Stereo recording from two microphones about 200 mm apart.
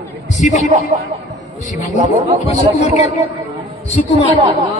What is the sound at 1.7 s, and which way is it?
A man's voice, 35° left (ahead or behind).